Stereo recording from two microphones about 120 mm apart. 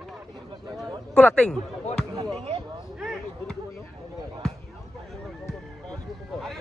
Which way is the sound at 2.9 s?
Centre (ahead or behind).